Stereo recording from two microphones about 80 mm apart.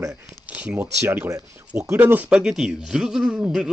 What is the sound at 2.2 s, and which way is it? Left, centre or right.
A man's voice, centre.